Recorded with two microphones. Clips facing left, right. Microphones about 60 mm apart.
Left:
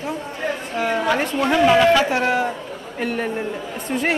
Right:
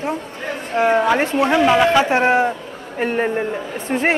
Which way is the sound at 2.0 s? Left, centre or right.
Right.